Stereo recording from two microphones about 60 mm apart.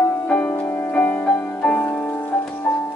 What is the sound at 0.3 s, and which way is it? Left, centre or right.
Music, left.